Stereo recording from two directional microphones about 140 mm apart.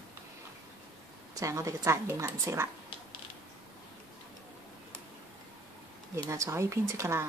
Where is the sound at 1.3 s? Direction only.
20° right (ahead or behind).